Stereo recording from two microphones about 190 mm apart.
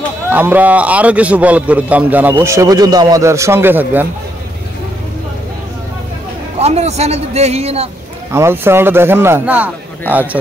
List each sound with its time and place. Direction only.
0.3 s a man's voice: 10° right (ahead or behind)
6.6 s a man's voice: 35° right (ahead or behind)
8.3 s a man's voice: 15° right (ahead or behind)